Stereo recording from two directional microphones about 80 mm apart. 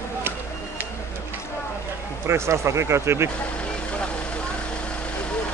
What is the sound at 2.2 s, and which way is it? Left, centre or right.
Speech, right.